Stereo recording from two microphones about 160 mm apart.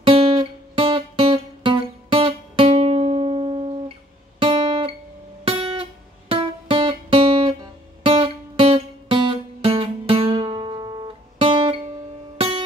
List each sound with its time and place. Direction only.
0.0 s guitar: 35° right (ahead or behind)
8.0 s music: 35° right (ahead or behind)